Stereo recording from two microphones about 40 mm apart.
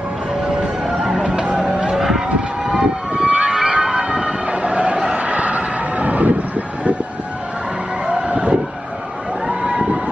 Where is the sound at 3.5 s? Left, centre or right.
Right.